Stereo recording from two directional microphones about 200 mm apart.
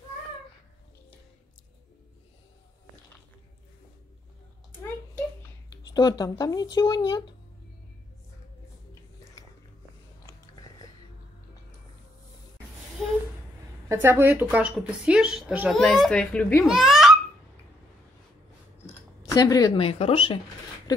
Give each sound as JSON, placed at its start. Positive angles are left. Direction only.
{"t": 5.9, "sound": "speech", "side_deg": 20}
{"t": 10.2, "sound": "biting", "side_deg": 20}
{"t": 13.0, "sound": "a sound", "side_deg": 0}
{"t": 13.8, "sound": "speech", "side_deg": -10}
{"t": 19.3, "sound": "speech", "side_deg": 20}